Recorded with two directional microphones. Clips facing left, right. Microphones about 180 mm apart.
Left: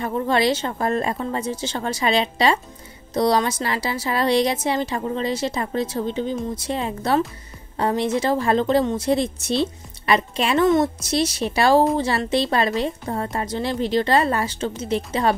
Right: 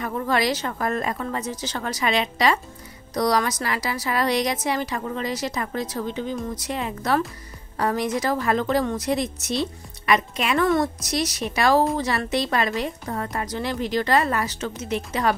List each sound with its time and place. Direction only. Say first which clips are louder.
0.0 s speech: left 3 dB; 30° left (ahead or behind)